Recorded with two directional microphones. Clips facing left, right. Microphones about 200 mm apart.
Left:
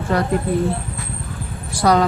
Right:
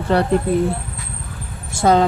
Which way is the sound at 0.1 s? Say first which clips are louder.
Right 3 dB; 30° right (ahead or behind).